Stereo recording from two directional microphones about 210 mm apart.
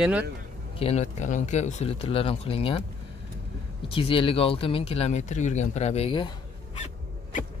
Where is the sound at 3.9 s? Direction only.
25° left (ahead or behind).